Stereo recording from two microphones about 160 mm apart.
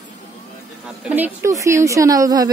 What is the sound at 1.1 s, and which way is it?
A woman's voice, 15° right (ahead or behind).